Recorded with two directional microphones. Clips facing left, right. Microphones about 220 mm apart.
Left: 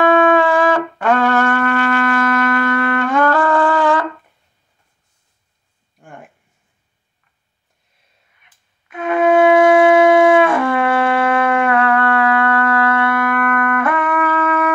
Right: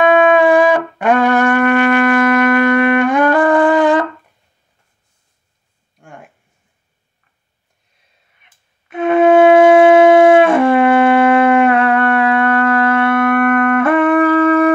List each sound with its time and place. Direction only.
0.0 s music: 15° right (ahead or behind)
5.9 s a sound: centre (ahead or behind)
8.8 s wind instrument: 25° right (ahead or behind)